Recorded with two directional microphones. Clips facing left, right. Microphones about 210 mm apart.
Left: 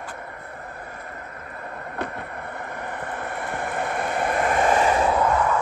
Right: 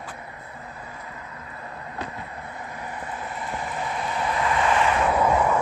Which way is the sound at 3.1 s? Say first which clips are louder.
Left 2 dB; 60° left (ahead or behind).